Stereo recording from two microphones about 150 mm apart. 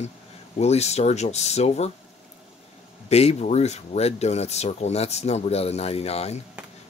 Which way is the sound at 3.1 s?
45° left (ahead or behind).